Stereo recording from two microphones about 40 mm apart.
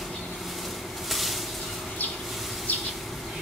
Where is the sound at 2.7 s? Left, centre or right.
Left.